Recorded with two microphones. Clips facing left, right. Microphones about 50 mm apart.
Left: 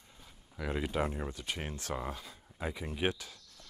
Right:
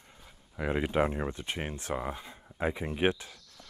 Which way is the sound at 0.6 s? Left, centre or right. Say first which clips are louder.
Right 6 dB; right.